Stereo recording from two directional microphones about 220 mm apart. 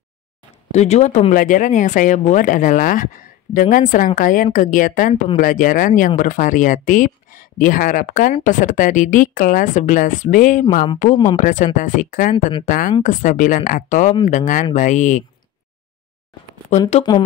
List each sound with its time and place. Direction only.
0.7 s speech: 30° left (ahead or behind)